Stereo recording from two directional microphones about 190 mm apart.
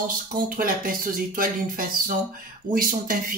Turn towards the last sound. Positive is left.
turn(degrees=-45)  # may be behind; listen again after turning